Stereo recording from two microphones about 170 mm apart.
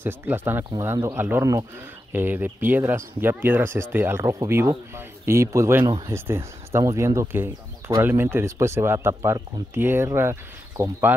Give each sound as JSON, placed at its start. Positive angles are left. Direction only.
{"t": 0.0, "sound": "speech", "side_deg": -15}